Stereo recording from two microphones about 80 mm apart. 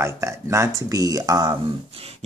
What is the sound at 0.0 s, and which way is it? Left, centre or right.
Speech, right.